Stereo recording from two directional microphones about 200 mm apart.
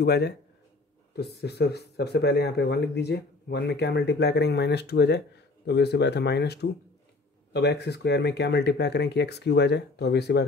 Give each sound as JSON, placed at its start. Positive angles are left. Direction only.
{"t": 0.0, "sound": "speech", "side_deg": 55}